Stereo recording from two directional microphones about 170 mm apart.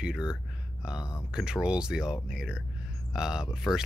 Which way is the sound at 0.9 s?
20° left (ahead or behind).